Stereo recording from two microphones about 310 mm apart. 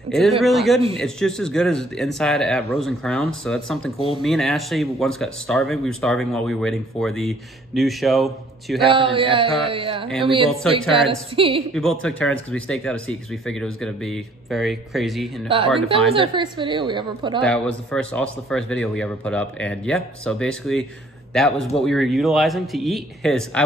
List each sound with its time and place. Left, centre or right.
0.4 s speech: centre
8.9 s a woman's voice: centre
11.7 s speech: centre
15.4 s a woman's voice: centre
17.4 s a man's voice: centre